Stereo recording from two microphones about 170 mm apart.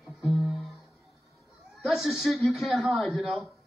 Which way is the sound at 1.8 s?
Centre (ahead or behind).